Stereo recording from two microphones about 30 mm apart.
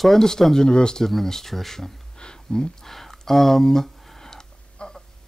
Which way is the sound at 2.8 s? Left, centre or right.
Centre.